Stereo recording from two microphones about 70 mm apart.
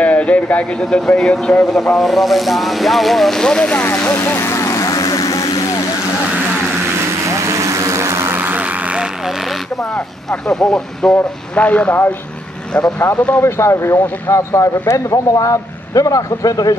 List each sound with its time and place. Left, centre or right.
0.0 s speech: centre
3.8 s vehicle: left
7.3 s vehicle: right
8.3 s vehicle: right
9.9 s speech: centre
13.4 s speech: left